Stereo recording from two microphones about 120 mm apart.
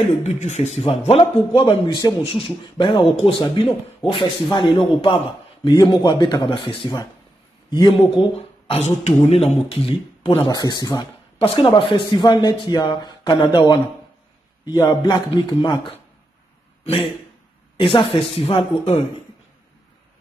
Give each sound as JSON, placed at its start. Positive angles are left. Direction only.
{"t": 0.2, "sound": "speech", "side_deg": 70}
{"t": 1.9, "sound": "speech", "side_deg": 30}
{"t": 2.3, "sound": "speech", "side_deg": 45}
{"t": 5.8, "sound": "speech", "side_deg": 35}
{"t": 8.4, "sound": "speech", "side_deg": 60}
{"t": 10.5, "sound": "speech", "side_deg": 35}
{"t": 11.4, "sound": "speech", "side_deg": 45}
{"t": 16.8, "sound": "a man's voice", "side_deg": 55}